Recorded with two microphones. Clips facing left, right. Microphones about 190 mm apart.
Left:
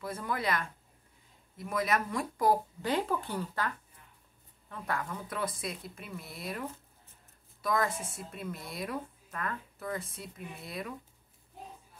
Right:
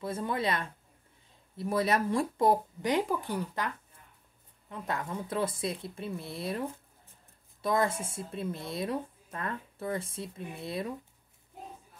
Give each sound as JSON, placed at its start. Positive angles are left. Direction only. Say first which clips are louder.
{"t": 0.0, "sound": "a woman's voice", "louder": "right 3 dB", "side_deg": -25}